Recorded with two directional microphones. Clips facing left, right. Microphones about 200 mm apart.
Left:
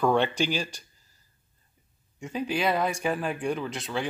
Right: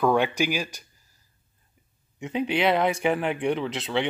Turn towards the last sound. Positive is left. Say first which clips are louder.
# right 4 dB
turn(degrees=-20)  # may be behind; listen again after turning